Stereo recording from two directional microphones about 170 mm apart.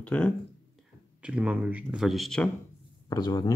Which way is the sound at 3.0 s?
20° left (ahead or behind).